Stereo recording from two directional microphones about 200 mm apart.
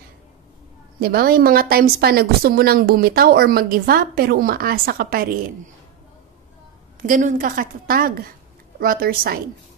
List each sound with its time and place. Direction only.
0.9 s a woman's voice: 50° right (ahead or behind)
7.0 s a woman's voice: 40° right (ahead or behind)